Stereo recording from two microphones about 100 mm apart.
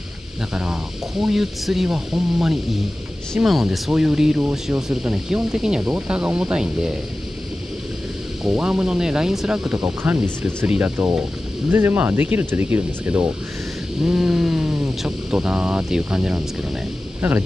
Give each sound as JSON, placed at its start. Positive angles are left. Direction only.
{"t": 1.2, "sound": "speech", "side_deg": -5}
{"t": 8.5, "sound": "speech", "side_deg": -5}
{"t": 10.0, "sound": "speech", "side_deg": -20}
{"t": 14.0, "sound": "speech", "side_deg": -5}